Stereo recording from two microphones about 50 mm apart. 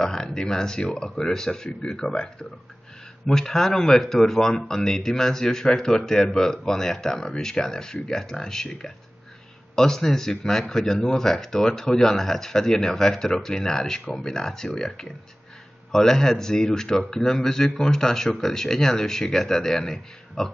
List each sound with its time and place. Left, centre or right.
0.0 s speech: centre